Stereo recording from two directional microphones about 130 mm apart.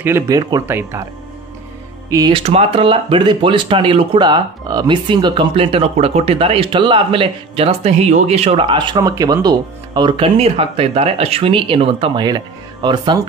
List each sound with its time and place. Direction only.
0.3 s speech: 30° right (ahead or behind)
0.7 s speech: 15° right (ahead or behind)
2.0 s speech: 25° right (ahead or behind)
2.3 s speech: 50° right (ahead or behind)